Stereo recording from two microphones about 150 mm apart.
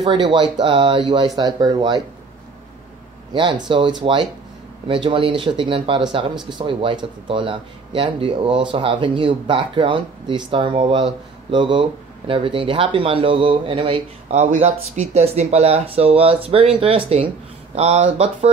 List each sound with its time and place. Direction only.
0.0 s speech: 30° right (ahead or behind)
3.3 s speech: 30° right (ahead or behind)